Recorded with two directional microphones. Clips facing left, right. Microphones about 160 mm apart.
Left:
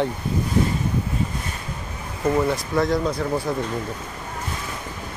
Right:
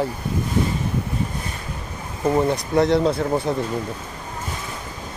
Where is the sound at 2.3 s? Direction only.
25° right (ahead or behind).